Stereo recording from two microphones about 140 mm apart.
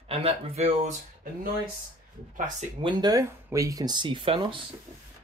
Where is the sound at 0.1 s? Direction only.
45° right (ahead or behind).